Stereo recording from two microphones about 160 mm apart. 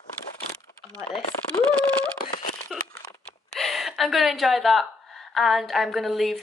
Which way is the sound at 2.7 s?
Centre (ahead or behind).